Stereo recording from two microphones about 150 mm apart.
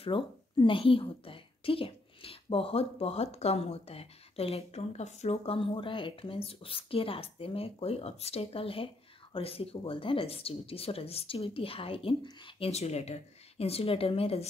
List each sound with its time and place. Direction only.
0.0 s a woman's voice: 35° left (ahead or behind)